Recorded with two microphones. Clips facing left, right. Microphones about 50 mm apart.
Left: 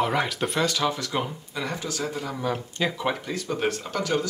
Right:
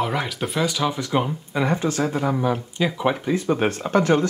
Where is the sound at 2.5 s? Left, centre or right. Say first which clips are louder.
Right 4 dB; centre; by 4.3 s right.